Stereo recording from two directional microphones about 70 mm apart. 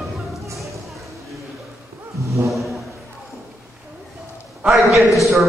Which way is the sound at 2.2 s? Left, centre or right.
Right.